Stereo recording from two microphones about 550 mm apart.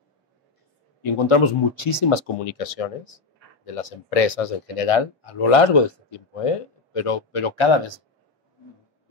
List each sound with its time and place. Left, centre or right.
1.0 s speech: left